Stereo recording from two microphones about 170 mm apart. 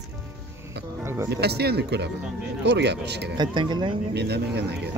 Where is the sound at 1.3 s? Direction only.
75° right (ahead or behind).